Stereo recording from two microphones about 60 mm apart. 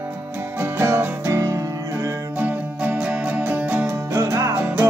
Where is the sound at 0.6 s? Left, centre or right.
Right.